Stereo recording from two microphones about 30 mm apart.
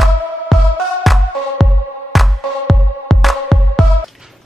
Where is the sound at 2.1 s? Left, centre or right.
Centre.